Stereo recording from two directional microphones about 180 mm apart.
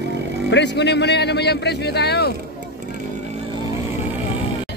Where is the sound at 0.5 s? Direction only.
75° left (ahead or behind).